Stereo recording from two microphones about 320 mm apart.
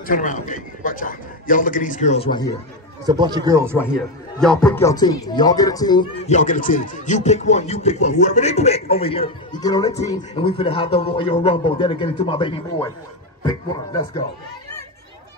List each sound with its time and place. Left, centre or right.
0.0 s a man's voice: left
3.1 s speech: centre
4.4 s speech: centre